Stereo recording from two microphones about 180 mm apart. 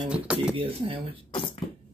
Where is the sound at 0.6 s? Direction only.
30° right (ahead or behind).